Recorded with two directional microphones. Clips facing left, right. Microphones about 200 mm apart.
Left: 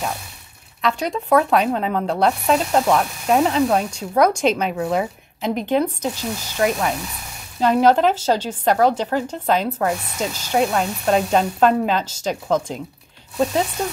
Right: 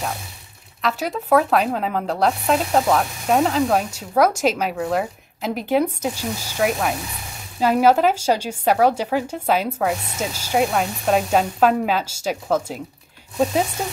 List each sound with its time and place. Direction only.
0.8 s speech: 5° right (ahead or behind)